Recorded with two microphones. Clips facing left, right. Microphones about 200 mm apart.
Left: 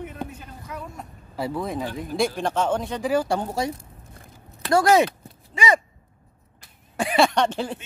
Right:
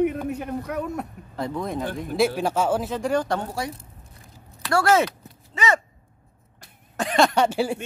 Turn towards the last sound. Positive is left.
turn(degrees=-10)  # may be behind; listen again after turning